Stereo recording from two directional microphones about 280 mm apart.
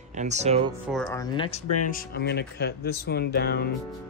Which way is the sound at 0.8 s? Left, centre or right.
Centre.